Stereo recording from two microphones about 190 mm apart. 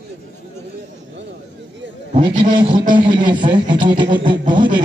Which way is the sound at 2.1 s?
45° right (ahead or behind).